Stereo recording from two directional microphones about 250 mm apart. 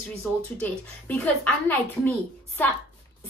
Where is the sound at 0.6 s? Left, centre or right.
Centre.